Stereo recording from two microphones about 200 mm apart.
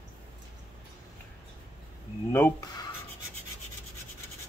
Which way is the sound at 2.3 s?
15° left (ahead or behind).